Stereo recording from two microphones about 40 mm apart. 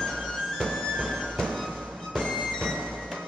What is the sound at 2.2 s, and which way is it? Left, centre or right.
Music, centre.